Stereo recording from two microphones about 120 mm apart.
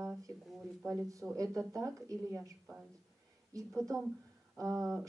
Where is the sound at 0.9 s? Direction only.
25° right (ahead or behind).